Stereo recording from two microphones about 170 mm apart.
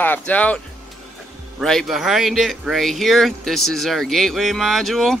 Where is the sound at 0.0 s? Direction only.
10° left (ahead or behind).